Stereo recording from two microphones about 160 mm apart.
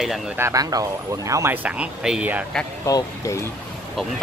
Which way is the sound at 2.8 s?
20° left (ahead or behind).